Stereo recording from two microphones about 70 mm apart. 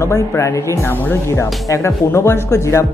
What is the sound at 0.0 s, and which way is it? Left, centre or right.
Speech, left.